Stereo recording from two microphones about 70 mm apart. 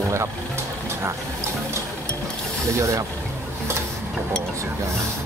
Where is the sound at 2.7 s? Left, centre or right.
Right.